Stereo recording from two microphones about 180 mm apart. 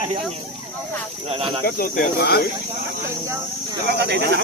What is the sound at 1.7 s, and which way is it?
Speech, 55° left (ahead or behind).